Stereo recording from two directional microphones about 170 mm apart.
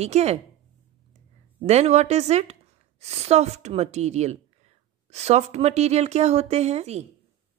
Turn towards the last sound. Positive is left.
turn(degrees=-40)  # may be behind; listen again after turning